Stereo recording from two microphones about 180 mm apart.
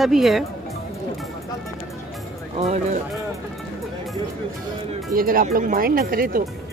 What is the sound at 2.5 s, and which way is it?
Speech, 40° right (ahead or behind).